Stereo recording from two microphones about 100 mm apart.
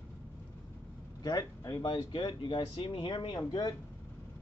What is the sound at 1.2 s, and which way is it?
Speech, 40° left (ahead or behind).